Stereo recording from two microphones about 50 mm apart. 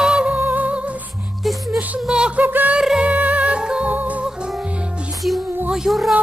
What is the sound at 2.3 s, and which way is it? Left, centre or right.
Music, right.